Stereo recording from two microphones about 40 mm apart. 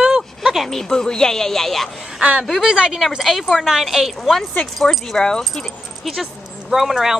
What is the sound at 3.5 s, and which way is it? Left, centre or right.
A woman's voice, centre.